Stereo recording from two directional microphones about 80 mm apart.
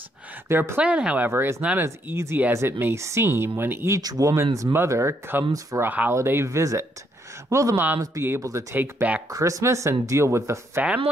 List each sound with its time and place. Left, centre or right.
0.5 s speech: right
0.8 s speech: centre
1.3 s speech: right
4.0 s speech: right
5.8 s speech: right
9.3 s speech: right